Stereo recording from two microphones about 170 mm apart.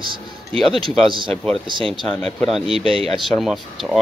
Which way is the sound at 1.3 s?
5° left (ahead or behind).